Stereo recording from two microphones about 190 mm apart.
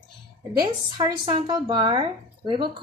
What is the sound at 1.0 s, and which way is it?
A woman's voice, 25° right (ahead or behind).